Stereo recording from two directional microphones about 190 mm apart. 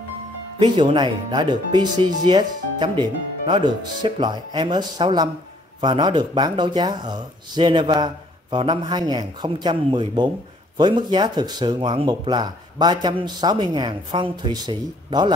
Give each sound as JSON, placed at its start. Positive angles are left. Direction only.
{"t": 0.6, "sound": "speech", "side_deg": -25}